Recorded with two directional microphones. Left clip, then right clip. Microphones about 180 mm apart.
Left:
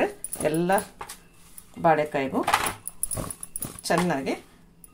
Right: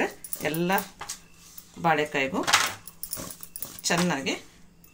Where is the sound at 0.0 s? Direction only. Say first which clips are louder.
Left 3 dB; 45° left (ahead or behind).